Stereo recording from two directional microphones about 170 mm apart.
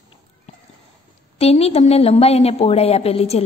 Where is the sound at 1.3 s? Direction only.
35° left (ahead or behind).